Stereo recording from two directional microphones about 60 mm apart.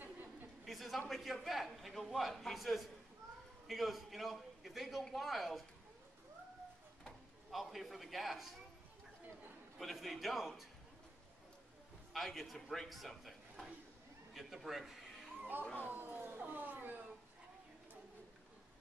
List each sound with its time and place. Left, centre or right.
0.0 s a sound: right
0.7 s a man's voice: centre
7.5 s a man's voice: centre
9.8 s a man's voice: centre
12.1 s a man's voice: centre
15.9 s speech: right